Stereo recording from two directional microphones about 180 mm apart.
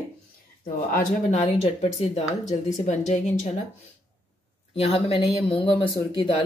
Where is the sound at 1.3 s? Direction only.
35° left (ahead or behind).